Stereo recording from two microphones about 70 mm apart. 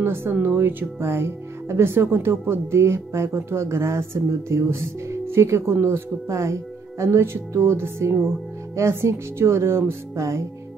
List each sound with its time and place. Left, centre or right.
0.0 s speech: right